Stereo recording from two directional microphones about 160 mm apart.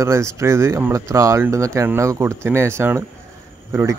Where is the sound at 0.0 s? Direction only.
15° right (ahead or behind).